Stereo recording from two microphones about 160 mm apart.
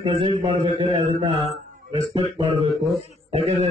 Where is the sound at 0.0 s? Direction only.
35° right (ahead or behind).